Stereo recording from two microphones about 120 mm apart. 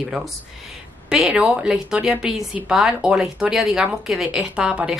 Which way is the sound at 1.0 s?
10° right (ahead or behind).